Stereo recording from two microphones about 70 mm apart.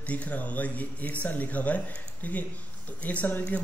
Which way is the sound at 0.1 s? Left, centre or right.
Left.